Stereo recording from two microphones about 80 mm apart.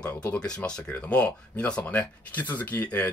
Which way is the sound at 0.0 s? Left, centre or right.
Centre.